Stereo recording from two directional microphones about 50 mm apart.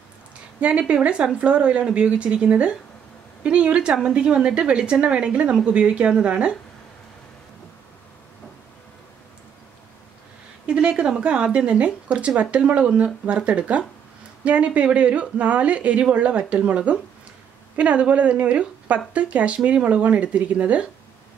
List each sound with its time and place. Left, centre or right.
0.6 s a woman's voice: right
10.7 s a woman's voice: right